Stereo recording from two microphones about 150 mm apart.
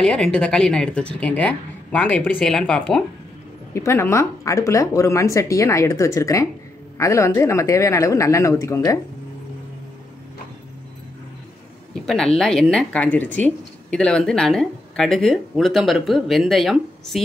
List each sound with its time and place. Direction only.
0.0 s speech: 5° left (ahead or behind)
3.7 s speech: 15° left (ahead or behind)
12.4 s a woman's voice: centre (ahead or behind)